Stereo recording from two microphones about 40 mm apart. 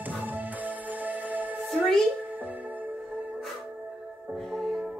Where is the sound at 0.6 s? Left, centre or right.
Right.